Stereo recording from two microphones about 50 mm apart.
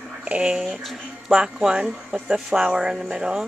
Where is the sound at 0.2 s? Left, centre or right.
Centre.